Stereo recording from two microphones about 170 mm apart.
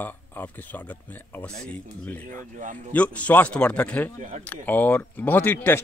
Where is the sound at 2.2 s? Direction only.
50° right (ahead or behind).